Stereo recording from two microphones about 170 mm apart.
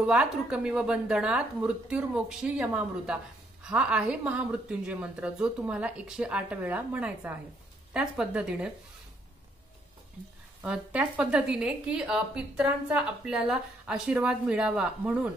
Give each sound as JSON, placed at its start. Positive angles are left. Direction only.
{"t": 0.0, "sound": "a woman's voice", "side_deg": -5}
{"t": 10.6, "sound": "speech", "side_deg": -5}